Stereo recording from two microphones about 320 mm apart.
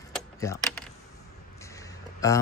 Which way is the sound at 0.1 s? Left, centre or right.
Centre.